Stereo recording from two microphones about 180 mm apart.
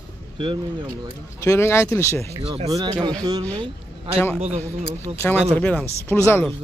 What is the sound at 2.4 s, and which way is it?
Speech, 35° right (ahead or behind).